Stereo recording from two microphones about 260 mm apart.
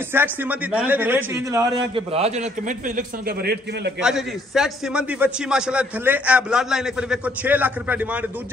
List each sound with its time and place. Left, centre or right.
0.1 s a man's voice: centre; by 3.9 s right
4.0 s a man's voice: centre